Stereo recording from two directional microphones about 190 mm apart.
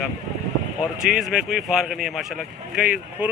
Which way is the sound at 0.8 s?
5° right (ahead or behind).